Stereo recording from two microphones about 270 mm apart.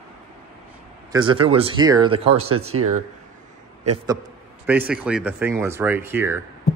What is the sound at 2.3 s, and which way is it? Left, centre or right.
Speech, right.